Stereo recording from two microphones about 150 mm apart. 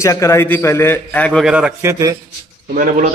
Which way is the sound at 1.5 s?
5° right (ahead or behind).